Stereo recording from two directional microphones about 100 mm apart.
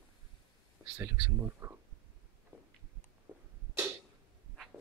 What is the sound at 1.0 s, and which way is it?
Speech, 25° right (ahead or behind).